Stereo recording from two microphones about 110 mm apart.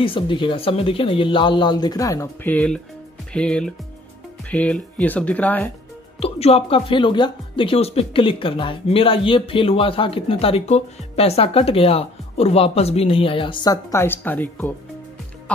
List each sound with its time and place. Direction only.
0.0 s speech: 50° left (ahead or behind); by 2.2 s 30° left (ahead or behind)
2.4 s speech: 10° left (ahead or behind)
6.1 s speech: 60° left (ahead or behind)
13.7 s a woman's voice: 35° left (ahead or behind)
14.0 s speech: 15° left (ahead or behind)